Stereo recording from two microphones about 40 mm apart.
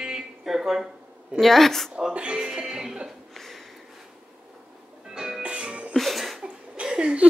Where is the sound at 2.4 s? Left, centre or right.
Centre.